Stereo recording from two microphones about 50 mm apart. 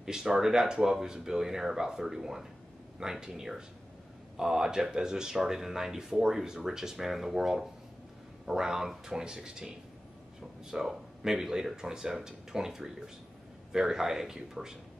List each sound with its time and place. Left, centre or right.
0.0 s speech: centre